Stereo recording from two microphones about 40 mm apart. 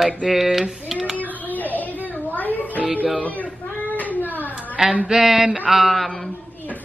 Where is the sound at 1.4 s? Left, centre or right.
Left.